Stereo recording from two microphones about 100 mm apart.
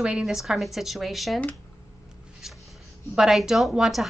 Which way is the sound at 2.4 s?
5° right (ahead or behind).